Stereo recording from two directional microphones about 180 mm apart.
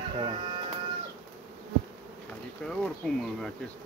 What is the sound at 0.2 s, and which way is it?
Speech, 25° right (ahead or behind).